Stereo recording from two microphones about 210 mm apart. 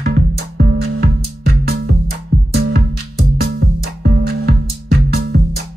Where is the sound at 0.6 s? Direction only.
45° right (ahead or behind).